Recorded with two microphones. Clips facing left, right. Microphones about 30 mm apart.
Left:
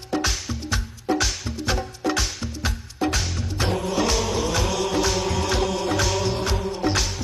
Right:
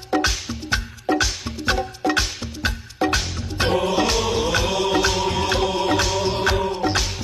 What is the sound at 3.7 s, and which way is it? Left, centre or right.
Music, right.